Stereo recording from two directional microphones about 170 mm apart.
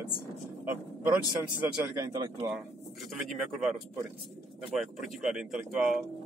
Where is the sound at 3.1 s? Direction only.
Centre (ahead or behind).